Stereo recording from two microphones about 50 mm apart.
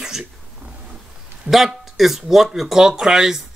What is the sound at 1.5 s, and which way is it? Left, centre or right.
A man's voice, centre.